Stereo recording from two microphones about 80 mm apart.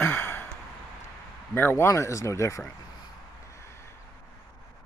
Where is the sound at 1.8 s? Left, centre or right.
Left.